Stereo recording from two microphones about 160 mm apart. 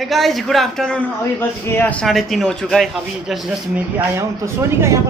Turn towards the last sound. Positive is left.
turn(degrees=-20)  # may be behind; listen again after turning